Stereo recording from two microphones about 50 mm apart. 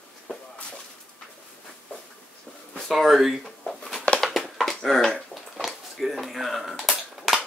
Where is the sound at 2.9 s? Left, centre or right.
Centre.